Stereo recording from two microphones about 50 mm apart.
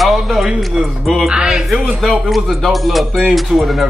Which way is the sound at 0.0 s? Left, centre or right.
Centre.